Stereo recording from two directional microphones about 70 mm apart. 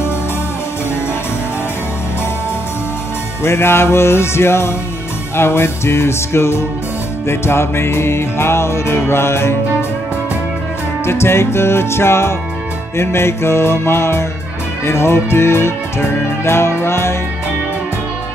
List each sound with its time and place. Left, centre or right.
3.4 s music: left
11.1 s music: left